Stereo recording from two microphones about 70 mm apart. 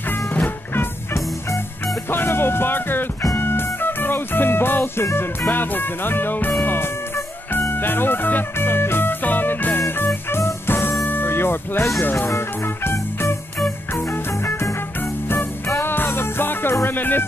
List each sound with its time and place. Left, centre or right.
0.3 s music: left
2.0 s music: left
5.5 s speech: left
7.7 s music: left
12.0 s speech: left
12.3 s music: left
15.8 s music: left